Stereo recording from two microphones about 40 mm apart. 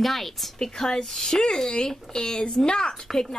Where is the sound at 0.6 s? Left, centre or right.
Centre.